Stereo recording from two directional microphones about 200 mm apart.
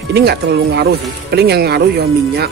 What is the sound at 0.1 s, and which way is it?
Speech, 55° right (ahead or behind).